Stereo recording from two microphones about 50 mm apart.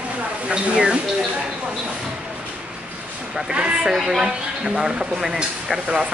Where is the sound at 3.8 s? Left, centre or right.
Centre.